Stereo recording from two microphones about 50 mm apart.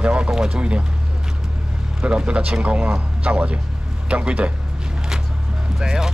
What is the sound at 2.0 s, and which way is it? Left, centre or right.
Speech, right.